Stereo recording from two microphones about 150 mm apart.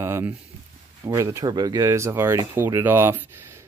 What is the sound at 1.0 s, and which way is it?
Speech, 20° right (ahead or behind).